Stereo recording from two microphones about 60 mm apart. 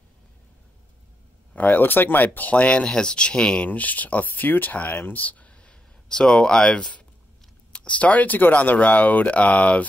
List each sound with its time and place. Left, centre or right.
1.5 s speech: left
3.6 s speech: left